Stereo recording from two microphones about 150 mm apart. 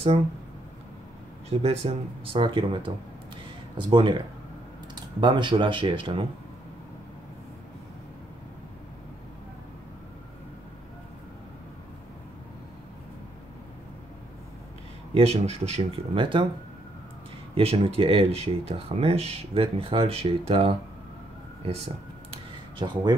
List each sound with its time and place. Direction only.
1.5 s speech: 40° right (ahead or behind)
15.1 s speech: 45° right (ahead or behind)
17.6 s speech: 40° right (ahead or behind)
22.3 s a sound: 30° right (ahead or behind)